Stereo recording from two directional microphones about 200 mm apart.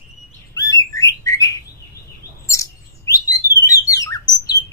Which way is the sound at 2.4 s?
15° left (ahead or behind).